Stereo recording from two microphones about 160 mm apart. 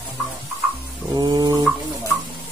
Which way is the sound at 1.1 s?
25° right (ahead or behind).